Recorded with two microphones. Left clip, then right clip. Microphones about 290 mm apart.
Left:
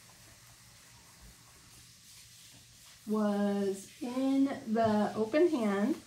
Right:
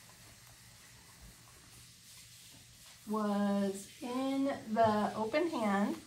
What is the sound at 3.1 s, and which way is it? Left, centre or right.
Speech, right.